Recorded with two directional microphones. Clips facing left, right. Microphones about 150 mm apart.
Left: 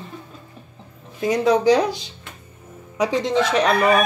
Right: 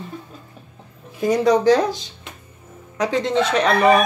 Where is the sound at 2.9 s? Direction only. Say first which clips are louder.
Even; 10° left (ahead or behind).